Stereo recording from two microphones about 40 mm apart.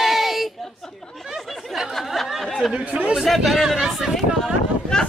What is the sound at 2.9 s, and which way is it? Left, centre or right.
Speech, right.